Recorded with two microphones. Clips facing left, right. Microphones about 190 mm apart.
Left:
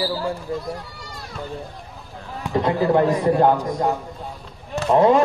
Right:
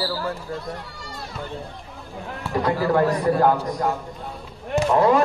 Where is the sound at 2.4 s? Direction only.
20° left (ahead or behind).